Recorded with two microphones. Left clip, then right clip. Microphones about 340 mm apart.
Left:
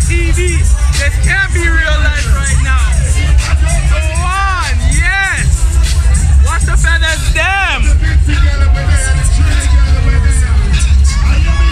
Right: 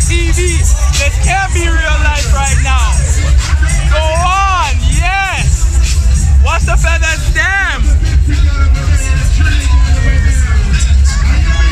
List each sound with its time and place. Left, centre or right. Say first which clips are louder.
0.1 s music: even; centre
1.0 s speech: left 1 dB; centre
4.2 s music: right 2 dB; centre
6.4 s speech: right 2 dB; centre